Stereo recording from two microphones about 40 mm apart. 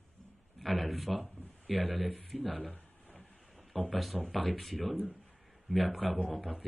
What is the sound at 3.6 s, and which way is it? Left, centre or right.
Speech, centre.